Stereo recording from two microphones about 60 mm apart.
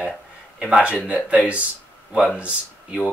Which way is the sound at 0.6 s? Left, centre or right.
Centre.